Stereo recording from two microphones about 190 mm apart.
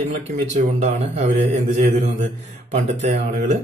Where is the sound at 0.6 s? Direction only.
40° right (ahead or behind).